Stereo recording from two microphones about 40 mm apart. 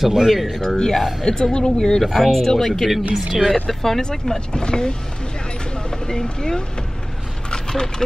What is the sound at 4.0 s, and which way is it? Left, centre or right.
Speech, centre.